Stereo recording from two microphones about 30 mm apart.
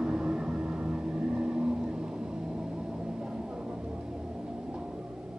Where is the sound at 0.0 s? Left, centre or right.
Right.